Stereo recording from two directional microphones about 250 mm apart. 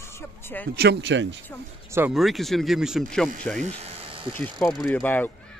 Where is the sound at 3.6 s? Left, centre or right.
Right.